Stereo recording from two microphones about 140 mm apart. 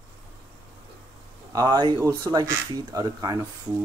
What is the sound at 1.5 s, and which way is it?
A man's voice, 25° right (ahead or behind).